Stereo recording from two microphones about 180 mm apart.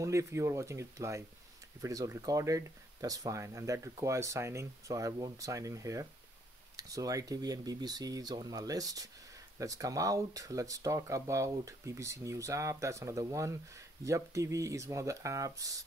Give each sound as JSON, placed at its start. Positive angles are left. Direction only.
{"t": 0.0, "sound": "speech", "side_deg": -15}